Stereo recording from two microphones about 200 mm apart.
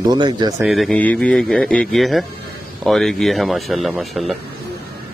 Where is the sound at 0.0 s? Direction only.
20° right (ahead or behind).